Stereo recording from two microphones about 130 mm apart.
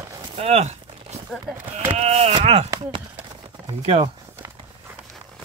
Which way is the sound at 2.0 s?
55° right (ahead or behind).